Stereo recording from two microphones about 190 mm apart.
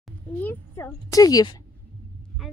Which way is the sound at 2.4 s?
Centre (ahead or behind).